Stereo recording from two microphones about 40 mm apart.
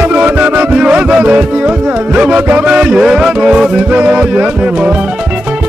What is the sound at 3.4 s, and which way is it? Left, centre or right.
Music, right.